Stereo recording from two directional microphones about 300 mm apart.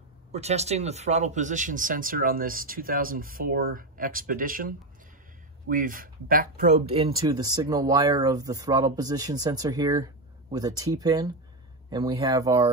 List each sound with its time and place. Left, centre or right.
0.3 s speech: right